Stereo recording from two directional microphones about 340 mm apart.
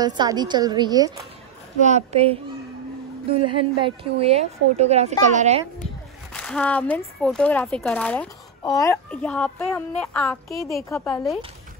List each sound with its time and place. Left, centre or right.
0.0 s a woman's voice: centre
3.5 s a woman's voice: centre
6.3 s speech: centre